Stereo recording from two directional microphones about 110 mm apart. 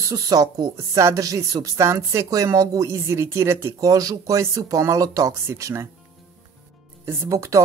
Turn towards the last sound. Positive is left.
turn(degrees=-30)  # may be behind; listen again after turning